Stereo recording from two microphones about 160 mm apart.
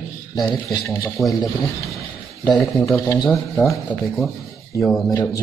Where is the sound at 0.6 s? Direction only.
20° left (ahead or behind).